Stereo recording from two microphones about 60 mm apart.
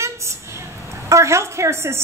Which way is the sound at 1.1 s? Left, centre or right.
Right.